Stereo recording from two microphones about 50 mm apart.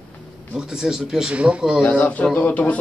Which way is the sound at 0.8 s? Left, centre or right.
Centre.